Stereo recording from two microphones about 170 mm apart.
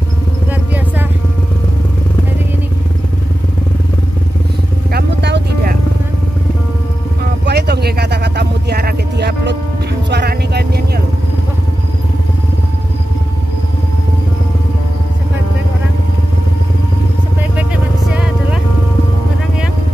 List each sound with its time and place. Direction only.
0.5 s vehicle: 10° right (ahead or behind)
4.9 s vehicle: 75° right (ahead or behind)
7.4 s a sound: 75° right (ahead or behind)
10.0 s music: 80° right
18.1 s vehicle: 5° right (ahead or behind)